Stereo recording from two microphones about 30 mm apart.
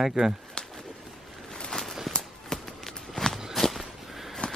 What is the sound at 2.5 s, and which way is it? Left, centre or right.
Walk, centre.